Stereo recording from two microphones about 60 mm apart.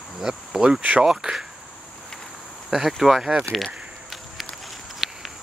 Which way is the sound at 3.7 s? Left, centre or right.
Centre.